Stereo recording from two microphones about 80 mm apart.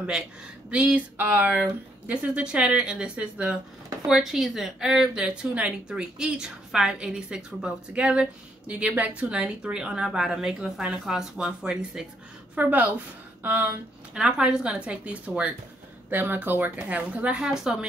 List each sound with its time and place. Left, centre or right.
0.7 s a woman's voice: centre
4.1 s a woman's voice: centre
12.5 s a woman's voice: centre
13.4 s a sound: right
14.1 s a woman's voice: centre